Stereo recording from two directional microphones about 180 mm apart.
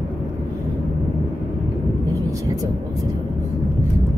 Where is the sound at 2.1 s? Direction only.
20° right (ahead or behind).